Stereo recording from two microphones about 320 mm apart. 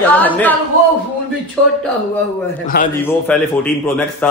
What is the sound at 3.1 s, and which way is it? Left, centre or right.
Speech, centre.